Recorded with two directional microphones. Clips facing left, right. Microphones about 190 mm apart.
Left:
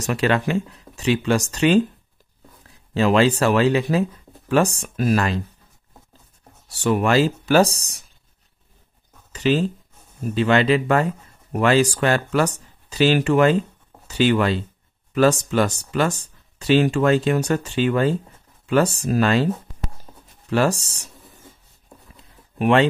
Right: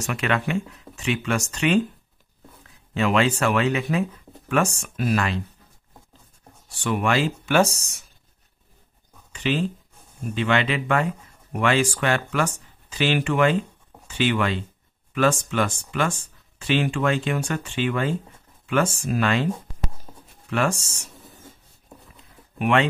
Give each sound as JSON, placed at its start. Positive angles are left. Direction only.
{"t": 0.0, "sound": "speech", "side_deg": 35}
{"t": 2.9, "sound": "speech", "side_deg": 35}
{"t": 6.7, "sound": "speech", "side_deg": 40}
{"t": 9.3, "sound": "speech", "side_deg": 40}
{"t": 22.6, "sound": "speech", "side_deg": 35}